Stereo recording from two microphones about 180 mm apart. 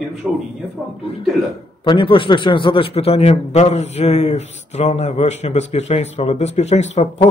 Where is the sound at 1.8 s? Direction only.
25° left (ahead or behind).